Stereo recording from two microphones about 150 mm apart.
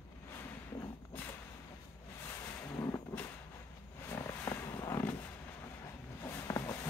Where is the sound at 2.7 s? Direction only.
20° left (ahead or behind).